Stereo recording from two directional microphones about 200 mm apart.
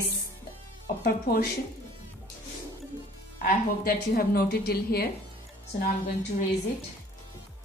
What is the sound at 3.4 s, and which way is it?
A woman's voice, 50° left (ahead or behind).